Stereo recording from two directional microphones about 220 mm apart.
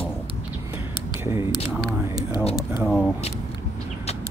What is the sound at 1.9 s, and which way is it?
Speech, 15° right (ahead or behind).